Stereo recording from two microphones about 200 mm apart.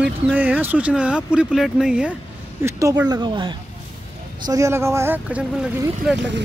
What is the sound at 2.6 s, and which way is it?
Speech, 15° right (ahead or behind).